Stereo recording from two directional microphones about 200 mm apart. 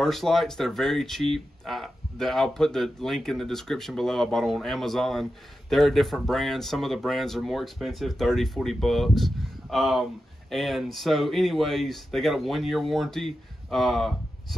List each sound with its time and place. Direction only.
0.0 s speech: centre (ahead or behind)